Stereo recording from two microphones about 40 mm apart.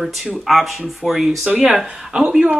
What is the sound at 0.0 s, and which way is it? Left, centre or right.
Speech, centre.